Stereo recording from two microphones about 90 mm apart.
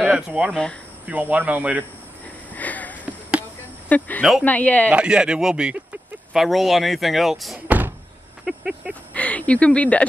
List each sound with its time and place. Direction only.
0.0 s speech: 10° right (ahead or behind)
0.5 s speech: 10° left (ahead or behind)
1.0 s speech: 15° right (ahead or behind)
2.5 s sniff: 20° left (ahead or behind)
3.1 s music: 15° right (ahead or behind)
4.2 s speech: centre (ahead or behind)
4.5 s speech: 15° left (ahead or behind)
4.9 s speech: 10° right (ahead or behind)
7.6 s door: 20° right (ahead or behind)
8.5 s speech: 5° right (ahead or behind)
9.1 s speech: 15° left (ahead or behind)